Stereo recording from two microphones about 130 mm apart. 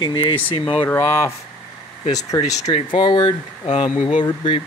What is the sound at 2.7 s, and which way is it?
Speech, 40° left (ahead or behind).